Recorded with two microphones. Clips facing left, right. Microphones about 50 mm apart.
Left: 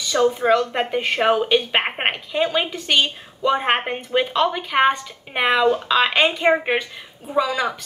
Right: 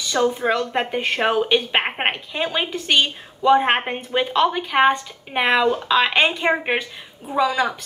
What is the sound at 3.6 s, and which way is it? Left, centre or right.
A woman's voice, centre.